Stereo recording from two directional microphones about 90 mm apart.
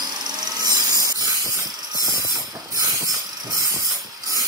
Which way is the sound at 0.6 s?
45° right (ahead or behind).